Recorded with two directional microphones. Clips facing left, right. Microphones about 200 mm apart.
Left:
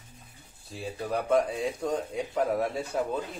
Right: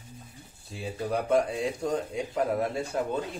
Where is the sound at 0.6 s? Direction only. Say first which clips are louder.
Right 1 dB; centre (ahead or behind).